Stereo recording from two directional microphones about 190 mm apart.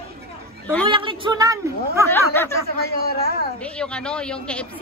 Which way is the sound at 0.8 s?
25° right (ahead or behind).